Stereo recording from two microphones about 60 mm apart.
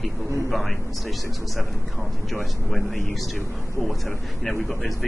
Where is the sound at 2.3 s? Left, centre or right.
Centre.